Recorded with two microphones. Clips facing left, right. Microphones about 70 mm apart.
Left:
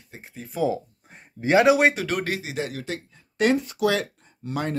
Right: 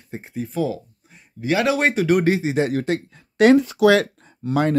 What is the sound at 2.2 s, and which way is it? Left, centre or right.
Speech, right.